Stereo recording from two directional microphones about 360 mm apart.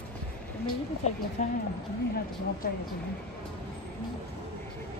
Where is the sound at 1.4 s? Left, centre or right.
Left.